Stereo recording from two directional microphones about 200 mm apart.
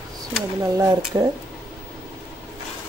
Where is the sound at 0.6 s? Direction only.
15° right (ahead or behind).